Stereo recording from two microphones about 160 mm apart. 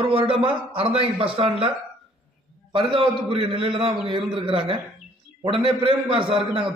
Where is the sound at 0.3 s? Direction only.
35° right (ahead or behind).